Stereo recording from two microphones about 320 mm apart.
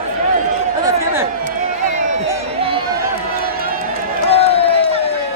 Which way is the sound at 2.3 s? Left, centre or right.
Centre.